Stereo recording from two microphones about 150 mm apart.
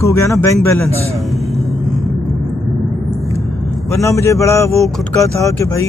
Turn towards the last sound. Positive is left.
turn(degrees=20)  # may be behind; listen again after turning